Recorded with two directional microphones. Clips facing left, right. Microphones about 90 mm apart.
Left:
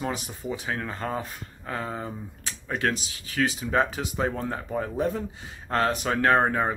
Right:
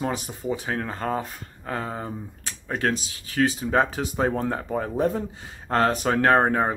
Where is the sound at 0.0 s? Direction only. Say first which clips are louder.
Right 3 dB; 40° right (ahead or behind).